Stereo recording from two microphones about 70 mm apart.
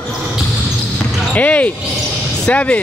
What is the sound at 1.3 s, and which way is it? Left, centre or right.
Speech, left.